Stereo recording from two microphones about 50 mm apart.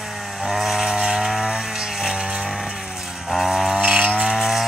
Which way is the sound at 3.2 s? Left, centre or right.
Centre.